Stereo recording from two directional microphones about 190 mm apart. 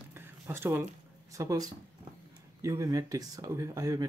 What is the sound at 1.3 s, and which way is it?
Speech, 15° right (ahead or behind).